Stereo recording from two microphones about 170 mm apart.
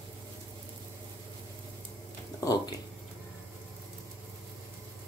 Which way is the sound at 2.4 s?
20° left (ahead or behind).